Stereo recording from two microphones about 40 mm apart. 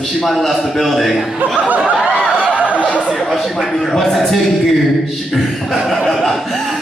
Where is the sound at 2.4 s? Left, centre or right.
Right.